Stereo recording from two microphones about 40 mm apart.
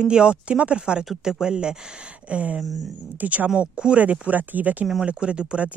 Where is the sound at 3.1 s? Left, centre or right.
Right.